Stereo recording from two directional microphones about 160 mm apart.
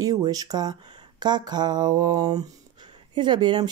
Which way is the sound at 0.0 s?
20° right (ahead or behind).